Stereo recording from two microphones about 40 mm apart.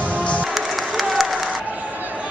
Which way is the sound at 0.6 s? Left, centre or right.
Centre.